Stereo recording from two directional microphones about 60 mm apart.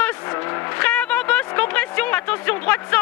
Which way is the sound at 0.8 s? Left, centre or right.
Left.